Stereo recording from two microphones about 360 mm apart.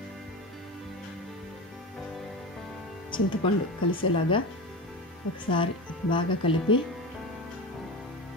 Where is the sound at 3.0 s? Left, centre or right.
Centre.